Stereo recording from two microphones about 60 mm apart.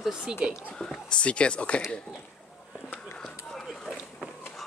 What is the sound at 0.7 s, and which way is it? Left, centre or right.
Speech, centre.